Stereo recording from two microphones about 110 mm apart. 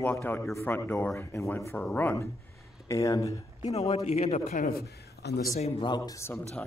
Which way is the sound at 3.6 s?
75° left (ahead or behind).